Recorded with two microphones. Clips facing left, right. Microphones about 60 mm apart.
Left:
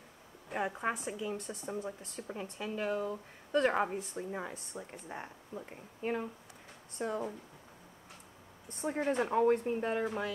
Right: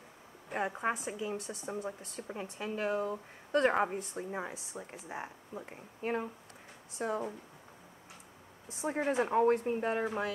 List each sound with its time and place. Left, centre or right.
0.5 s a woman's voice: centre
8.6 s a woman's voice: centre